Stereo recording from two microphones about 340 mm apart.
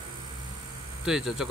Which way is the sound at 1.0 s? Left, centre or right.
Centre.